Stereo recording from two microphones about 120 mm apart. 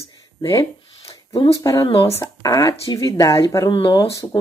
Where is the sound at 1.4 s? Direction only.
30° left (ahead or behind).